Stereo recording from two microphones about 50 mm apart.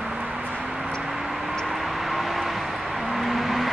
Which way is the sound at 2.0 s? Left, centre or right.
Centre.